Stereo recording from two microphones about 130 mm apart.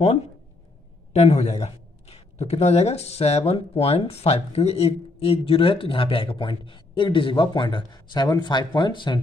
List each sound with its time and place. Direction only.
1.1 s a man's voice: 55° left (ahead or behind); by 9.2 s 35° left (ahead or behind)